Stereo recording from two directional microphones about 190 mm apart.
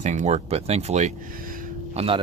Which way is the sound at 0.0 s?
40° right (ahead or behind).